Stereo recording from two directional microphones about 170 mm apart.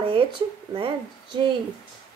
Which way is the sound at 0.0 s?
30° right (ahead or behind).